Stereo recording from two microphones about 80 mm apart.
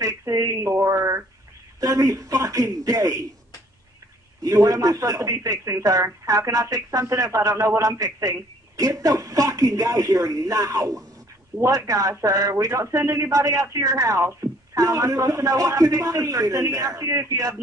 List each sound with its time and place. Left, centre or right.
0.0 s a sound: right
1.8 s a man's voice: right
4.4 s a man's voice: right